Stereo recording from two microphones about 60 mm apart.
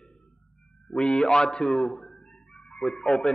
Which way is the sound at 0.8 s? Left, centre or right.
Centre.